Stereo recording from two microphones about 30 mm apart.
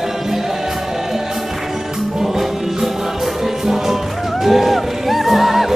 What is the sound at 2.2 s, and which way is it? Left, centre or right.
Music, centre.